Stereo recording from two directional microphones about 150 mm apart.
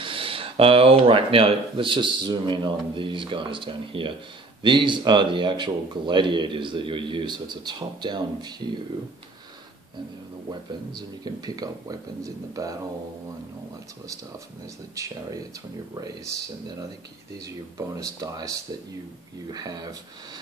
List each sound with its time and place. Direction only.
0.0 s speech: 35° right (ahead or behind)
11.0 s speech: 25° right (ahead or behind)
15.0 s speech: 20° right (ahead or behind)
17.7 s speech: 20° right (ahead or behind)